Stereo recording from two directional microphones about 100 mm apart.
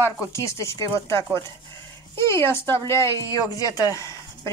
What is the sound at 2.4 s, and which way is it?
A woman's voice, 25° left (ahead or behind).